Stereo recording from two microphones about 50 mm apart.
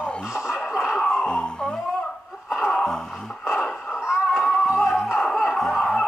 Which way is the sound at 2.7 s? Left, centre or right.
Centre.